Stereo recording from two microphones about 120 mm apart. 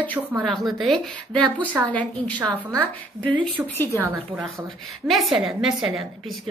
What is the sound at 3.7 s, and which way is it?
Speech, 15° left (ahead or behind).